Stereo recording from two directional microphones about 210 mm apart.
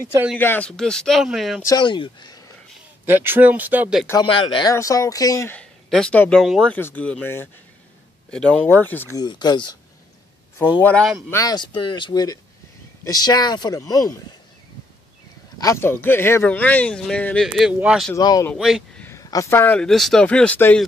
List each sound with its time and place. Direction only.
0.4 s speech: 10° left (ahead or behind)
1.6 s speech: 20° left (ahead or behind)
3.1 s speech: 10° right (ahead or behind)
4.1 s speech: 20° left (ahead or behind)
10.6 s speech: 10° left (ahead or behind)
11.2 s speech: 15° left (ahead or behind)
15.6 s speech: 10° left (ahead or behind); by 18.1 s 5° right (ahead or behind)
18.1 s speech: 15° left (ahead or behind)
18.5 s speech: centre (ahead or behind)
19.0 s speech: 15° left (ahead or behind)